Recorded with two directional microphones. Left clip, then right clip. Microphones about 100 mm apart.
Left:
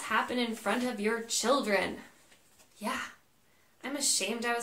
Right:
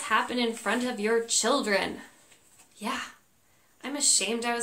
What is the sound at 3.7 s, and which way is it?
Speech, 15° right (ahead or behind).